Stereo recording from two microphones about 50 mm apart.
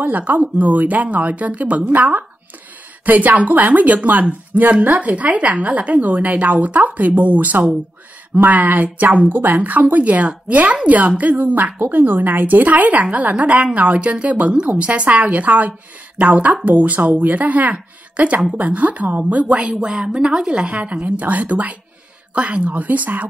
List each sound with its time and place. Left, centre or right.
0.0 s a woman's voice: right
19.7 s a woman's voice: centre; by 23.2 s right